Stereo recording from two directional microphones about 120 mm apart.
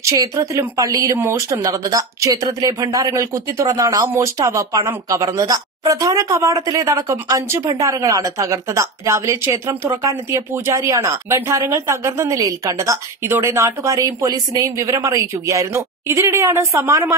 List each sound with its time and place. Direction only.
0.0 s a woman's voice: 25° right (ahead or behind)